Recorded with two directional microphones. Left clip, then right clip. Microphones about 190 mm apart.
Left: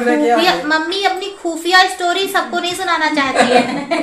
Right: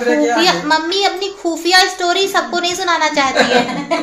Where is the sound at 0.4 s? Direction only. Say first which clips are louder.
Right 1 dB; 30° right (ahead or behind).